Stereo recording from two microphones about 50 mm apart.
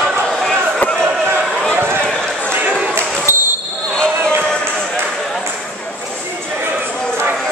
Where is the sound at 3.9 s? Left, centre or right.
Centre.